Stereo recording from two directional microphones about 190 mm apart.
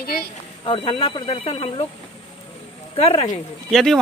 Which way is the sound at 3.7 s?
Centre (ahead or behind).